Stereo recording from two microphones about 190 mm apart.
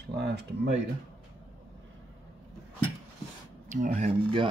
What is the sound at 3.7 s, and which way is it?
Speech, 40° right (ahead or behind).